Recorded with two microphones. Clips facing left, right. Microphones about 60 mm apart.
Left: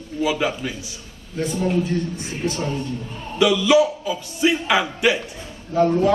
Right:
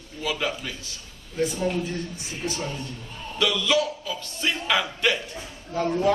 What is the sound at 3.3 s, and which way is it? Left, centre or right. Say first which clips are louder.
A man's voice: left 7 dB; centre.